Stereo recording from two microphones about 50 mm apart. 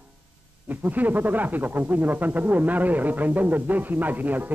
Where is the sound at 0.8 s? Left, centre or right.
Right.